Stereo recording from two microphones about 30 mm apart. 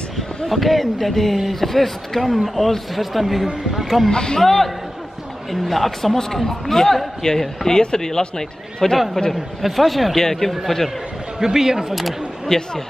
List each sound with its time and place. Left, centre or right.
0.5 s a man's voice: centre
4.1 s a man's voice: left
4.4 s a man's voice: centre
6.1 s a man's voice: centre
9.3 s a man's voice: centre
10.1 s speech: centre
11.3 s speech: centre
12.4 s speech: centre